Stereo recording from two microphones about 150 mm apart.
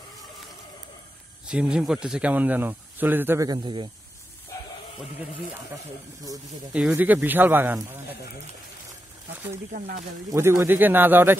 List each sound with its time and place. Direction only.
1.4 s speech: 5° right (ahead or behind)
3.4 s a man's voice: 30° right (ahead or behind)
6.7 s speech: 10° right (ahead or behind)
9.7 s speech: 90° right
10.3 s speech: 20° right (ahead or behind)